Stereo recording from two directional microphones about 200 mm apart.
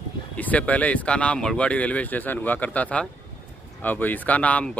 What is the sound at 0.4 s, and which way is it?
Speech, 5° left (ahead or behind).